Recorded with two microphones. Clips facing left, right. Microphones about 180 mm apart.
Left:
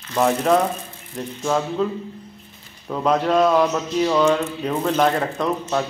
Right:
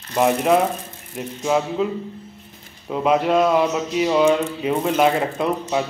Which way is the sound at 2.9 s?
10° right (ahead or behind).